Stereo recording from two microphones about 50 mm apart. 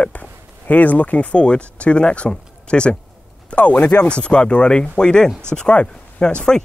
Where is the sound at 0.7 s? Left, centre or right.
Left.